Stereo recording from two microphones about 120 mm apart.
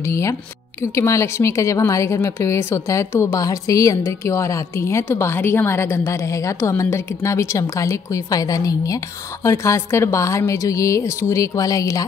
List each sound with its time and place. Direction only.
0.9 s a woman's voice: 25° left (ahead or behind)